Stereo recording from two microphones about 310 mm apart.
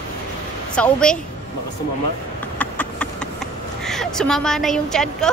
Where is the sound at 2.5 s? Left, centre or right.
Centre.